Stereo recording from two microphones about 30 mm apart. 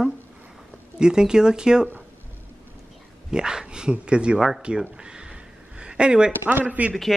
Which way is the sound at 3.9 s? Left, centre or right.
Right.